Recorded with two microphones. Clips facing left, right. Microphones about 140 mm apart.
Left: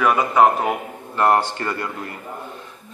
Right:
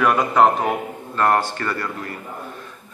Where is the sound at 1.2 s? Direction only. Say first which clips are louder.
Left 1 dB; 15° left (ahead or behind).